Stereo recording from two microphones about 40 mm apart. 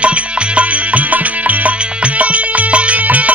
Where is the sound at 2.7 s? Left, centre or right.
Right.